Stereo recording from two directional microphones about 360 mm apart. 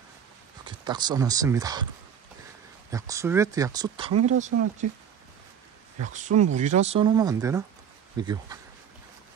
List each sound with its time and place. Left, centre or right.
0.7 s speech: centre
2.9 s speech: centre
4.1 s speech: right
4.4 s speech: centre
6.0 s speech: centre